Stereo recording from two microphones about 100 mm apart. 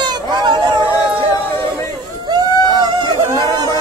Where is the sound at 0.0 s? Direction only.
45° right (ahead or behind).